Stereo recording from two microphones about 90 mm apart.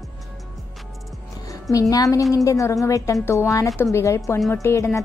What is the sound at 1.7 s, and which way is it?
Speech, 40° left (ahead or behind).